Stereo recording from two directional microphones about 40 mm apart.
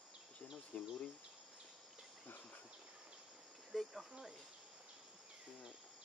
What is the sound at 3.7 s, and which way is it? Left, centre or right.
Cricket, centre.